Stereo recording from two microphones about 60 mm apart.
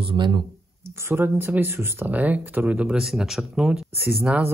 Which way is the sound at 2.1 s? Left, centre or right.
Right.